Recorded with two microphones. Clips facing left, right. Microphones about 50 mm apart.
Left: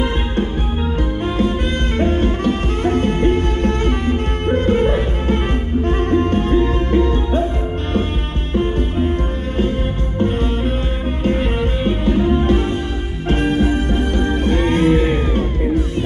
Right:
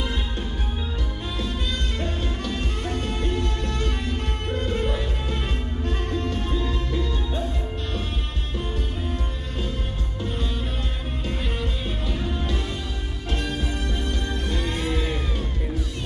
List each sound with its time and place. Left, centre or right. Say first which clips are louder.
2.0 s music: left 12 dB; left
8.5 s music: left 13 dB; left
10.1 s music: left 11 dB; left
11.8 s music: left 13 dB; left